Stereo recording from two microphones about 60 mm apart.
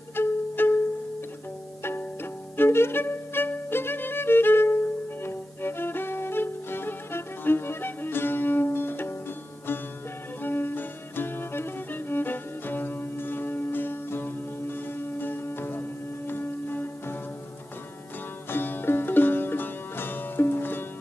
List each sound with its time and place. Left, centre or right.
0.1 s music: left
1.8 s music: left
2.5 s violin: left
5.2 s music: left
10.4 s music: left
18.5 s music: left